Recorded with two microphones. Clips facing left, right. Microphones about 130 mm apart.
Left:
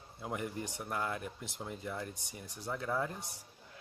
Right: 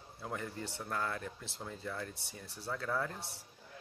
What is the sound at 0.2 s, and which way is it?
Speech, 15° left (ahead or behind).